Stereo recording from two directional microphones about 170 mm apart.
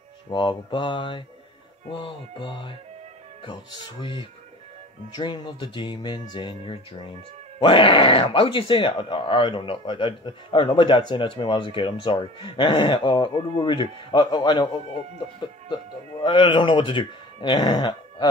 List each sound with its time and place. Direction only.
0.3 s speech: 30° left (ahead or behind)